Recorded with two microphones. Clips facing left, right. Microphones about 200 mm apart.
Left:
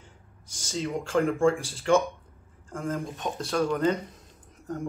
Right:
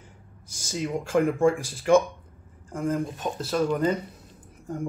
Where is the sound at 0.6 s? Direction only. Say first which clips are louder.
Right 1 dB; 10° right (ahead or behind).